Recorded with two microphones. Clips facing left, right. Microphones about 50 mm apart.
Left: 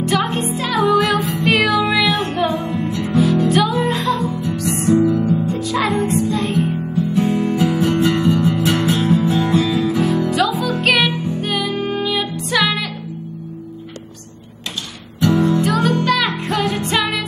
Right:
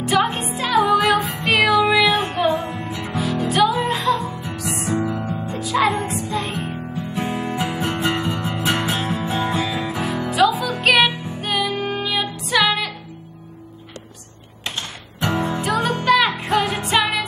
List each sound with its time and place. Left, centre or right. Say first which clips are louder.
0.0 s music: left 1 dB; centre
4.3 s music: left 7 dB; centre
4.6 s music: left 8 dB; centre
5.0 s music: left 8 dB; centre
15.1 s music: left 6 dB; right
15.6 s music: left 3 dB; centre